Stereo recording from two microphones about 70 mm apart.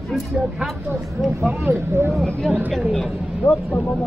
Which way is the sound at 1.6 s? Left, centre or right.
Right.